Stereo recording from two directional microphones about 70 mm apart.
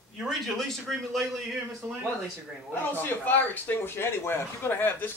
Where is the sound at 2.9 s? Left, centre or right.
Left.